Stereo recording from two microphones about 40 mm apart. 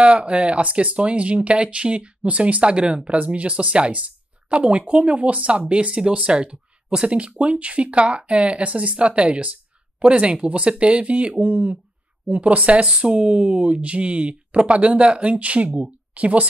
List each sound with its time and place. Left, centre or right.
0.0 s speech: right